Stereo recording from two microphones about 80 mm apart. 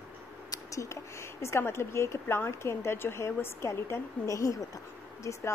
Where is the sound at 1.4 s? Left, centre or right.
Left.